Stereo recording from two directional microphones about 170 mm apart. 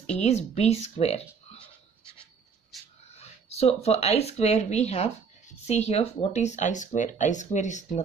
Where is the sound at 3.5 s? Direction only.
40° left (ahead or behind).